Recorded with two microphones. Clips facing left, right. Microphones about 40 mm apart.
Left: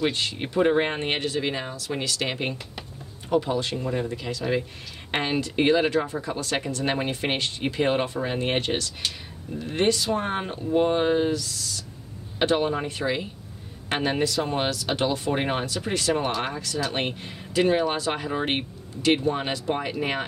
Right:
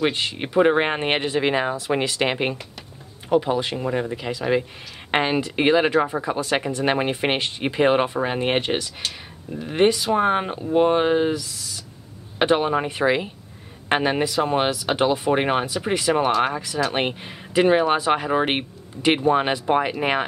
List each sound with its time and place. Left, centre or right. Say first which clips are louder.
0.0 s speech: right 3 dB; centre
3.3 s speech: right 4 dB; centre